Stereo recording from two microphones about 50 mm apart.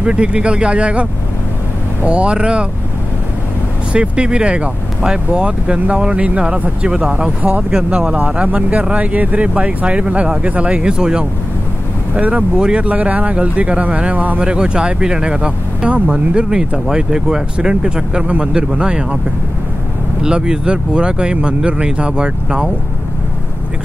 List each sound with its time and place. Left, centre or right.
0.0 s speech: right
2.0 s speech: right
3.9 s speech: right
12.1 s speech: right
12.5 s speech: centre
14.4 s speech: centre
20.2 s speech: centre